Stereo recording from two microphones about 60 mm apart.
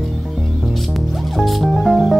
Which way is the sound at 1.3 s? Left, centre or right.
Centre.